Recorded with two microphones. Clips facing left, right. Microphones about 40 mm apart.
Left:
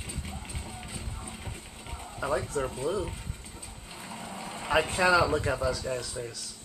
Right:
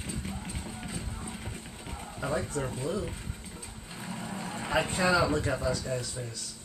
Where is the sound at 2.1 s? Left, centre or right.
Centre.